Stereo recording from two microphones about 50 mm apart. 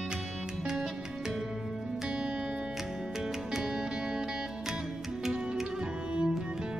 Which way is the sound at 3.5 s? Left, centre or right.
Centre.